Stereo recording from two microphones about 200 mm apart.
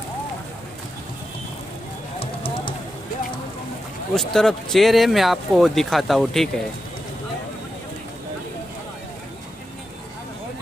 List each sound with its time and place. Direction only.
2.1 s music: 25° left (ahead or behind)
4.1 s speech: centre (ahead or behind)